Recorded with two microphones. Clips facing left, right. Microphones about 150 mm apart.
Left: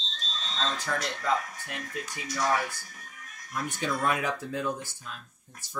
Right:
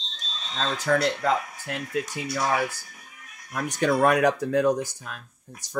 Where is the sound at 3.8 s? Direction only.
65° right (ahead or behind).